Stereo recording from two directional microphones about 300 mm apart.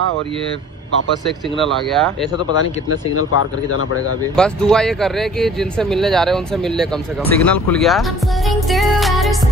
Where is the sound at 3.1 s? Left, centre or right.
Left.